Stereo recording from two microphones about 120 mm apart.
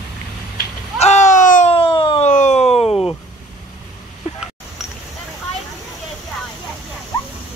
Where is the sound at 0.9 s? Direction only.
70° left (ahead or behind); by 1.7 s 90° left.